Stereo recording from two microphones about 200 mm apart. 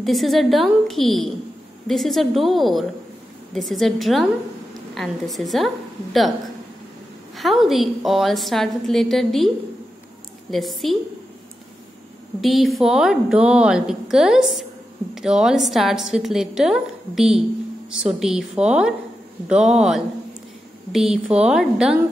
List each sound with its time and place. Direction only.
0.0 s a woman's voice: centre (ahead or behind)
7.3 s a woman's voice: centre (ahead or behind)
10.5 s a woman's voice: centre (ahead or behind)
12.4 s a woman's voice: centre (ahead or behind)